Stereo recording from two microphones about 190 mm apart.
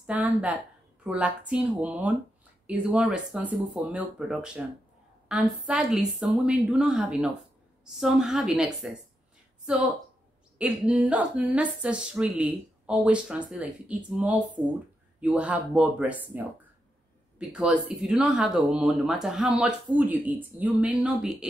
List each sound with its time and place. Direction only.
0.0 s speech: 5° right (ahead or behind)
10.6 s speech: 5° right (ahead or behind)